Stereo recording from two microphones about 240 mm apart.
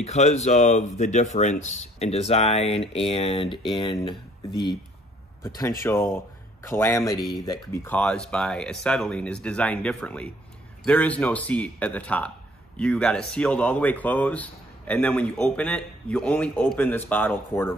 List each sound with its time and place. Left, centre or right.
0.0 s speech: left; by 17.7 s centre